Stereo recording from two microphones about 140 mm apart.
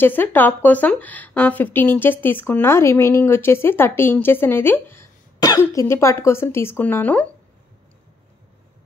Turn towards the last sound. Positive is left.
turn(degrees=15)  # may be behind; listen again after turning